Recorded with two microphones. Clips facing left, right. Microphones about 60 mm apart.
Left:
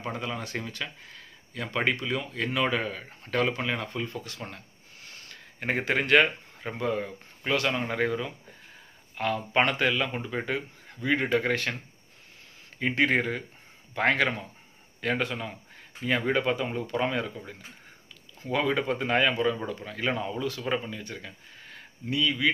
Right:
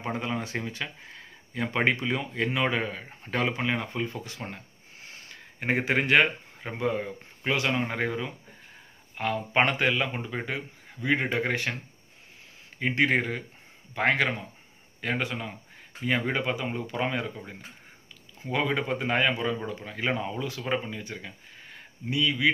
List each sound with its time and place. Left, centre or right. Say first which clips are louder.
0.0 s speech: right 2 dB; centre
5.6 s speech: right 1 dB; centre
12.7 s speech: even; centre